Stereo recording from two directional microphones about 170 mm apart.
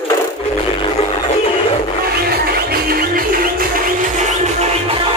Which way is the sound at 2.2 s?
60° right (ahead or behind).